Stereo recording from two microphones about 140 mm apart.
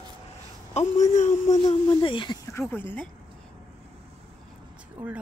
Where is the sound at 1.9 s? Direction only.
35° left (ahead or behind).